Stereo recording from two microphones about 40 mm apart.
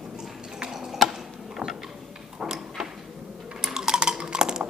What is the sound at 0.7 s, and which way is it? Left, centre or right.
Tick-tock, centre.